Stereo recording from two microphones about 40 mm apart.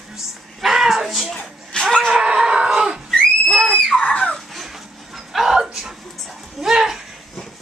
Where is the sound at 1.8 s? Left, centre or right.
Centre.